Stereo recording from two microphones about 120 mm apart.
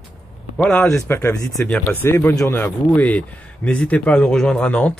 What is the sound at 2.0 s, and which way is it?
Speech, 20° left (ahead or behind).